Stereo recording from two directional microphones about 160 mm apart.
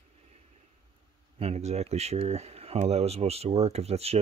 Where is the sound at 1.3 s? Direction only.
40° right (ahead or behind).